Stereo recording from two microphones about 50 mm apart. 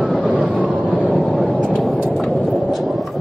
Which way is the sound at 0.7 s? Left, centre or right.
Right.